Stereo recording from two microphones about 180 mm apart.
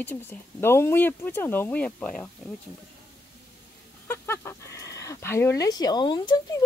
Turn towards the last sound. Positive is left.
turn(degrees=25)  # may be behind; listen again after turning